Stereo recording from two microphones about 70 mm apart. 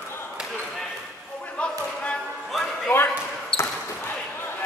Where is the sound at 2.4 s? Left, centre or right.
Centre.